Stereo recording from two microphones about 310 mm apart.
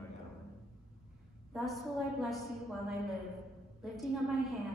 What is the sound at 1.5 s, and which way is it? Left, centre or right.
A woman's voice, centre.